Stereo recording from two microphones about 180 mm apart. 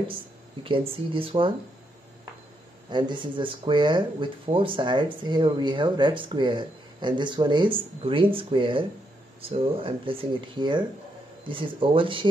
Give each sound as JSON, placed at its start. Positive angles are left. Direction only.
{"t": 0.9, "sound": "speech", "side_deg": -30}
{"t": 2.9, "sound": "speech", "side_deg": -25}